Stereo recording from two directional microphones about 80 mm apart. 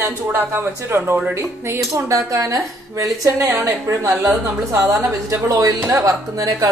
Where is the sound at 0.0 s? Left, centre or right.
Right.